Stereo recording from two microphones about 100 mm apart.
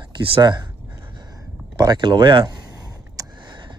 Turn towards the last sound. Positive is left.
turn(degrees=-50)  # may be behind; listen again after turning